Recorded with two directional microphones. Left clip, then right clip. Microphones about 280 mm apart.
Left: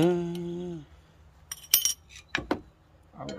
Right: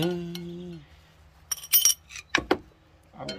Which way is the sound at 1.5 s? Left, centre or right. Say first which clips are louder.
Right 3 dB; centre.